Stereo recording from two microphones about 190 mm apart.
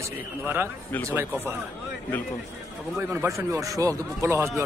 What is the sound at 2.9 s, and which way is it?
A man's voice, 15° right (ahead or behind).